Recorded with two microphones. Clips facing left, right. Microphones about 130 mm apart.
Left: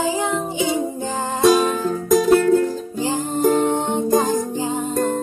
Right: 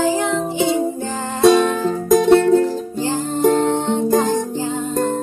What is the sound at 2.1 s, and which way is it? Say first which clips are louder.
Music: right 2 dB; 30° right (ahead or behind).